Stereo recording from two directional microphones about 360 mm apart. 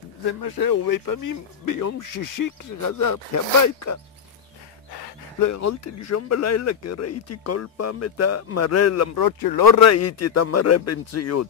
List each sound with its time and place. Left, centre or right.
0.3 s speech: left
4.9 s a sound: left
5.5 s speech: left
9.2 s speech: left
9.8 s speech: left